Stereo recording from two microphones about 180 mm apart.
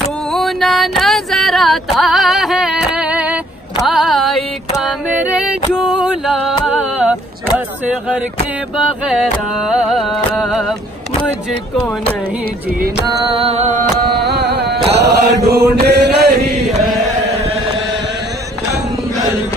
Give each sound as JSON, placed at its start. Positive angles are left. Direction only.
{"t": 0.3, "sound": "music", "side_deg": 0}
{"t": 3.8, "sound": "a sound", "side_deg": 0}
{"t": 12.7, "sound": "chant", "side_deg": -55}
{"t": 13.4, "sound": "music", "side_deg": -35}
{"t": 14.2, "sound": "a sound", "side_deg": -65}
{"t": 15.4, "sound": "chant", "side_deg": -65}
{"t": 16.5, "sound": "chant", "side_deg": 0}